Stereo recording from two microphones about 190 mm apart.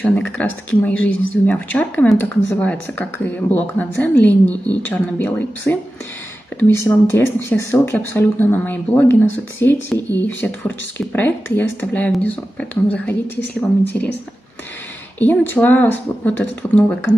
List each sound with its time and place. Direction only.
0.0 s speech: 10° left (ahead or behind)
9.9 s speech: 20° right (ahead or behind)
10.2 s speech: 10° left (ahead or behind)
13.9 s speech: 10° left (ahead or behind)
15.1 s speech: 10° left (ahead or behind)